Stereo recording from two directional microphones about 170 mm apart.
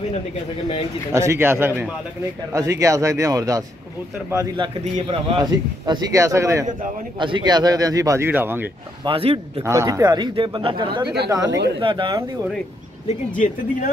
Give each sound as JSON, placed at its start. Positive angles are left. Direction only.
{"t": 1.1, "sound": "a man's voice", "side_deg": -15}
{"t": 5.3, "sound": "speech", "side_deg": -25}
{"t": 7.2, "sound": "speech", "side_deg": -30}
{"t": 9.0, "sound": "a man's voice", "side_deg": -35}
{"t": 9.6, "sound": "speech", "side_deg": -20}
{"t": 13.4, "sound": "speech", "side_deg": 50}